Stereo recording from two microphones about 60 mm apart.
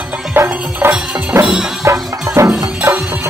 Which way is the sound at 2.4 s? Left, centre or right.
Right.